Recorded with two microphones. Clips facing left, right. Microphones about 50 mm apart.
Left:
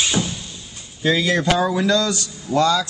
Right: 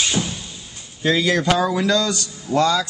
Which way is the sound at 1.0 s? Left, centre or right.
Centre.